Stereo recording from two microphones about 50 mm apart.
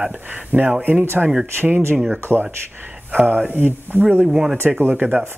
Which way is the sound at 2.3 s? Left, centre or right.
Right.